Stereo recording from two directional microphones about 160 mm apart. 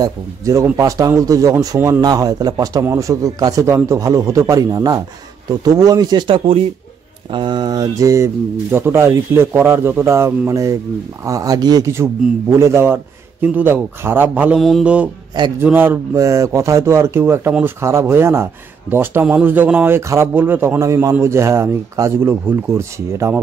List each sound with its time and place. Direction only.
0.0 s a man's voice: 20° right (ahead or behind)
14.6 s mantra: centre (ahead or behind)
15.6 s a man's voice: 15° right (ahead or behind)